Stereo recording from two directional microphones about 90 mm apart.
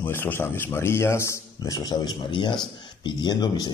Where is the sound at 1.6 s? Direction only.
40° left (ahead or behind).